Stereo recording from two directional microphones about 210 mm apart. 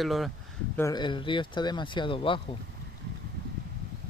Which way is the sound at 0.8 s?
20° left (ahead or behind).